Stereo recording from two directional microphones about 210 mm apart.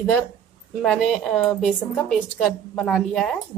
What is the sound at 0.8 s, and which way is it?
Speech, 5° left (ahead or behind).